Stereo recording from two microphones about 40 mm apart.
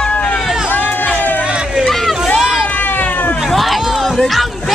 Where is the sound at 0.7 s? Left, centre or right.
Left.